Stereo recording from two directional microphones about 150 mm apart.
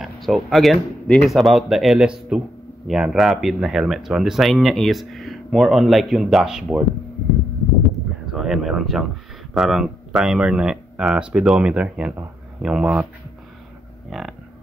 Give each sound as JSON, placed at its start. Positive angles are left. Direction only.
{"t": 0.0, "sound": "speech", "side_deg": 0}
{"t": 8.3, "sound": "speech", "side_deg": -5}
{"t": 14.1, "sound": "a sound", "side_deg": 0}